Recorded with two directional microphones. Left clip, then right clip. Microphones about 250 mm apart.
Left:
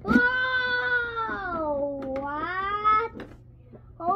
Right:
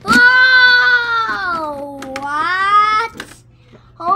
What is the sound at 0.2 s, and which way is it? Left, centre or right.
Baby cry, centre.